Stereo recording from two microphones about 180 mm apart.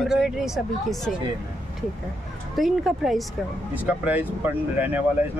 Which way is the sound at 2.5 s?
Centre (ahead or behind).